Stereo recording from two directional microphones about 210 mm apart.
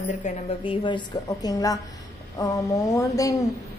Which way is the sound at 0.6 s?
25° left (ahead or behind).